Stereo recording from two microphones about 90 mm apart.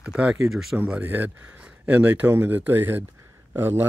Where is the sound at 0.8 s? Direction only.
15° right (ahead or behind).